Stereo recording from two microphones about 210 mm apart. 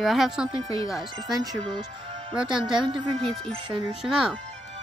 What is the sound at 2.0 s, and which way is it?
Music, 25° right (ahead or behind).